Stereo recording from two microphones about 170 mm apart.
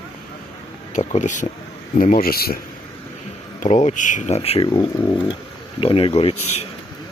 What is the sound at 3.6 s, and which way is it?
Speech, 45° left (ahead or behind).